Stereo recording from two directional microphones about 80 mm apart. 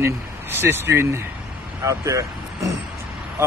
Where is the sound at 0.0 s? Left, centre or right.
Right.